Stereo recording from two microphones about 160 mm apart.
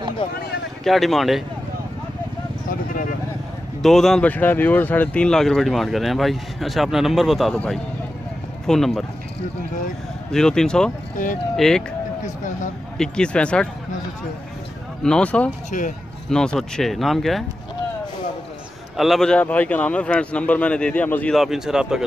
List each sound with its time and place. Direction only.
0.2 s speech: 30° left (ahead or behind)
0.8 s speech: centre (ahead or behind)
2.7 s a sound: 55° left (ahead or behind)
3.8 s speech: centre (ahead or behind)
10.3 s speech: 5° left (ahead or behind)
12.9 s speech: 5° left (ahead or behind)
15.0 s a man's voice: 5° left (ahead or behind)
15.7 s speech: 55° left (ahead or behind)
16.3 s speech: 5° left (ahead or behind)
18.9 s a man's voice: centre (ahead or behind)